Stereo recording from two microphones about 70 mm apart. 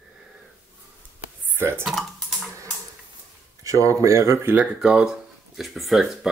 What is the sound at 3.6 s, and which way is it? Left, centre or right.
Speech, right.